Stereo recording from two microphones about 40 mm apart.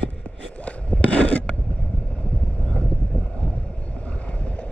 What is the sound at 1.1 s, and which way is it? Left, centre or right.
Filing, left.